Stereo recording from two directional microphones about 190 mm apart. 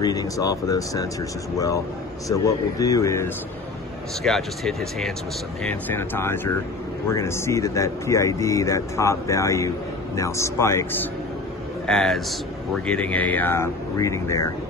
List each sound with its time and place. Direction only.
0.0 s speech: 20° left (ahead or behind)
2.2 s speech: 15° left (ahead or behind)
4.2 s speech: centre (ahead or behind)
11.8 s speech: centre (ahead or behind)